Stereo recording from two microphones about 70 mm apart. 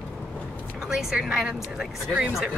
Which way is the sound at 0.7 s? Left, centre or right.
Centre.